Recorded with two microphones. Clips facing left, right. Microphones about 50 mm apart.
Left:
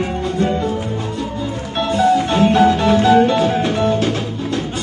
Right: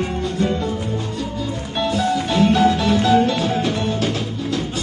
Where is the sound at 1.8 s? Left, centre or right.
Centre.